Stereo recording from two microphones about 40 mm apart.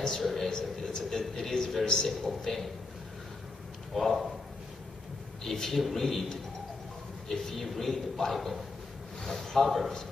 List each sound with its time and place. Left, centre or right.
0.2 s speech: centre
0.5 s a man's voice: centre
3.9 s a man's voice: centre
5.4 s a man's voice: centre
7.2 s a man's voice: centre